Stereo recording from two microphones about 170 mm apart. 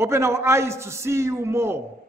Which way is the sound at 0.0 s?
15° right (ahead or behind).